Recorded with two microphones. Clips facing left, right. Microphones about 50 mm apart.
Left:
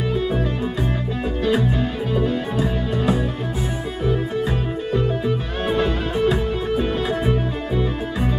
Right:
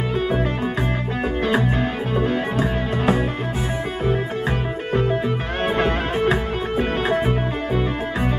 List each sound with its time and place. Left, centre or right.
0.1 s music: right
2.1 s music: right
5.7 s music: right